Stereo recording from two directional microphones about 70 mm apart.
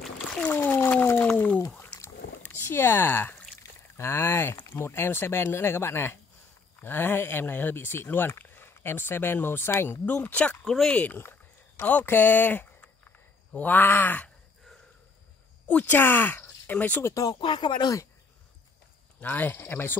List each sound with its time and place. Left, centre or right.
0.0 s a sound: centre
0.5 s a sound: left
2.4 s a sound: left
3.9 s speech: left
10.0 s speech: left
10.6 s speech: centre
10.9 s speech: left
15.7 s speech: centre
17.0 s speech: left
19.2 s speech: left